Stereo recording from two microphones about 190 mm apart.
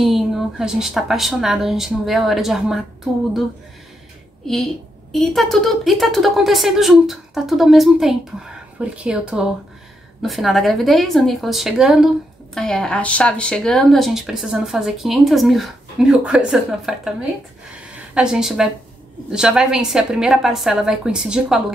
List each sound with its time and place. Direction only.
0.0 s speech: centre (ahead or behind)
5.1 s a woman's voice: centre (ahead or behind)